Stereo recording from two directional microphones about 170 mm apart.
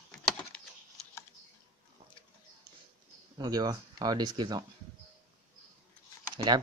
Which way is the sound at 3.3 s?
25° right (ahead or behind).